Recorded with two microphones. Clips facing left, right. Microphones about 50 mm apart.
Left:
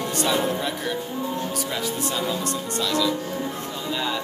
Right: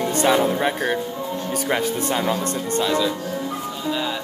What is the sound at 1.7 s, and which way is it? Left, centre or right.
Speech, right.